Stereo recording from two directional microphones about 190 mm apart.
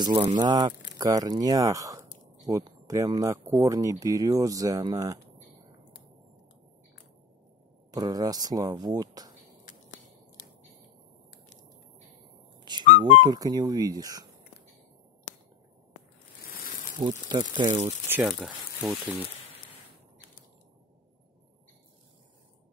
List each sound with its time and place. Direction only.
0.0 s speech: 25° right (ahead or behind)
7.9 s speech: 20° right (ahead or behind)
12.5 s whistle: 20° right (ahead or behind)
12.8 s music: 40° right (ahead or behind)
13.2 s speech: 20° right (ahead or behind)
17.0 s speech: 25° right (ahead or behind)
17.8 s speech: 10° right (ahead or behind)